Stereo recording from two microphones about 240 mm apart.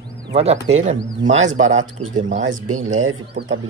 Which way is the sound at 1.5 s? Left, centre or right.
Right.